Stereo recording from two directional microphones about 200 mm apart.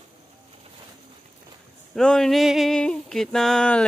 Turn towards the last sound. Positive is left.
turn(degrees=5)  # may be behind; listen again after turning